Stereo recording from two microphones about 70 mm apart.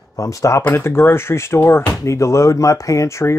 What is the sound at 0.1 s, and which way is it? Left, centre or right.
Speech, left.